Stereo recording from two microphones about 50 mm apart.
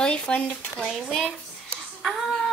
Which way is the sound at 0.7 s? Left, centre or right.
Centre.